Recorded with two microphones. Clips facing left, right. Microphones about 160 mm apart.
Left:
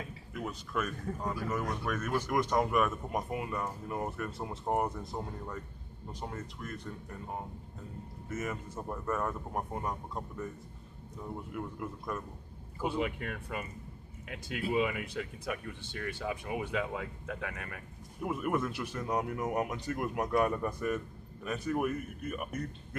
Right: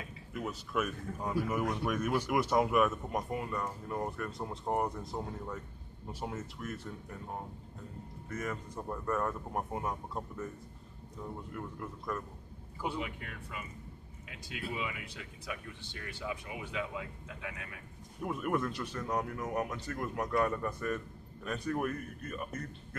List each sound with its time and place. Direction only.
0.3 s speech: centre (ahead or behind)
8.3 s speech: 5° left (ahead or behind)
11.5 s speech: 10° left (ahead or behind)
12.8 s speech: 55° left (ahead or behind)
14.7 s speech: 55° left (ahead or behind)
18.2 s speech: 5° left (ahead or behind)